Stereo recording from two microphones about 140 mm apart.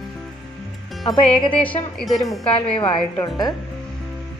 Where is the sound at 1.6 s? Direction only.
5° left (ahead or behind).